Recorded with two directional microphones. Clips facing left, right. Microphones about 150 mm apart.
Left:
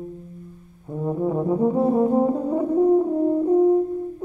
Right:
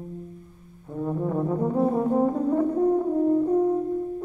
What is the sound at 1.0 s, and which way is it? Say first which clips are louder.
Brass instrument: left 3 dB; 15° left (ahead or behind).